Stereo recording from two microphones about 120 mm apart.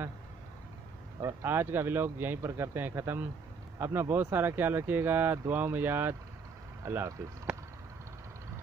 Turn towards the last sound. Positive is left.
turn(degrees=-25)  # may be behind; listen again after turning